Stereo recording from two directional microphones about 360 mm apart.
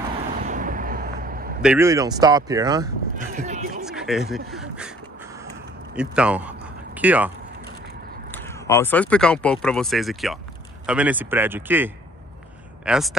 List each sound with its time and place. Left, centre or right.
0.4 s vehicle: right
1.6 s speech: centre; by 3.8 s right
3.8 s speech: centre
5.9 s speech: centre
8.3 s speech: centre